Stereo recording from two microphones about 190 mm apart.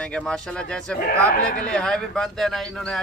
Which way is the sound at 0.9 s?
45° left (ahead or behind).